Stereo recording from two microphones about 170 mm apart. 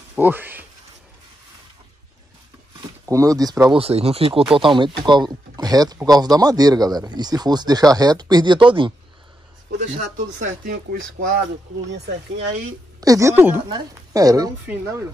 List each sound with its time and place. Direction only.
0.1 s speech: 10° right (ahead or behind)
3.1 s speech: 20° right (ahead or behind)
3.7 s speech: 35° right (ahead or behind)
9.7 s speech: 50° right (ahead or behind); by 11.4 s 70° right (ahead or behind)
13.0 s a woman's voice: 20° right (ahead or behind)